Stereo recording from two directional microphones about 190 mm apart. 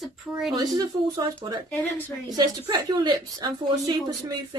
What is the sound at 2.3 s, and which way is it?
Speech, 25° right (ahead or behind).